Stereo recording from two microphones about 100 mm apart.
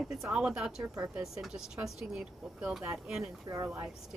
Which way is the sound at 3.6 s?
15° right (ahead or behind).